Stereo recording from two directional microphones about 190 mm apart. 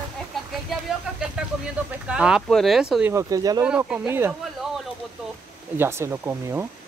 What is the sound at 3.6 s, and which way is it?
Speech, 5° right (ahead or behind).